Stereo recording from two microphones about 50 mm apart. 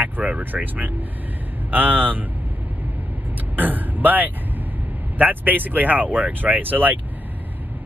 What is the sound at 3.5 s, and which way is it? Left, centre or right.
Speech, right.